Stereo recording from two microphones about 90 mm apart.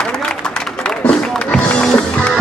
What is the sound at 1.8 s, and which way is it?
Music, 10° left (ahead or behind).